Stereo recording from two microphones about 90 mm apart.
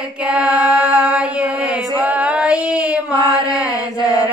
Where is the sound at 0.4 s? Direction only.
40° left (ahead or behind).